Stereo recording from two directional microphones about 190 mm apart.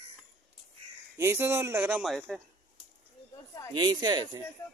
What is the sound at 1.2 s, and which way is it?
Speech, 15° right (ahead or behind).